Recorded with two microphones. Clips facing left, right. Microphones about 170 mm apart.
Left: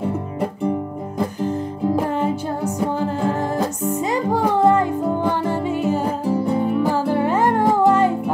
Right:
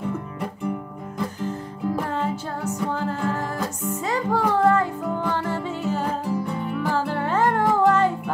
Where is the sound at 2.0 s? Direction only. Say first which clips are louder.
Left 4 dB; 15° left (ahead or behind).